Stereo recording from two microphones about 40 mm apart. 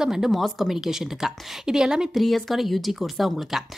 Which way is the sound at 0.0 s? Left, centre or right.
Centre.